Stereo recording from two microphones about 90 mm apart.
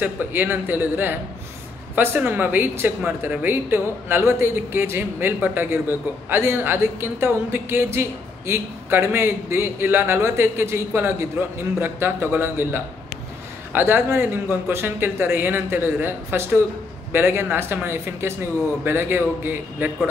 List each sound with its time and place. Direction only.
0.0 s speech: 20° right (ahead or behind)